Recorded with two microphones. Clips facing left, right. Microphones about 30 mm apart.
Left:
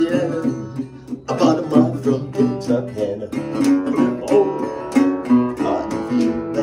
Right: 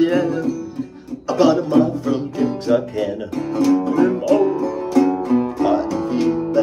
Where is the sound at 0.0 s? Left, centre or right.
Centre.